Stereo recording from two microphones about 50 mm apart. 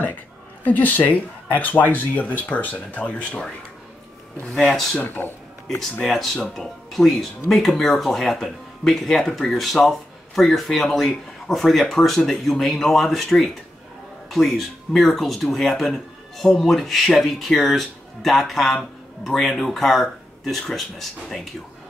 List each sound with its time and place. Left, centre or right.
0.7 s speech: left
4.6 s speech: centre
4.9 s speech: left
5.7 s speech: centre